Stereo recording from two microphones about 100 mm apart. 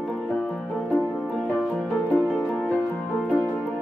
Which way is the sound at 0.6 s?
15° left (ahead or behind).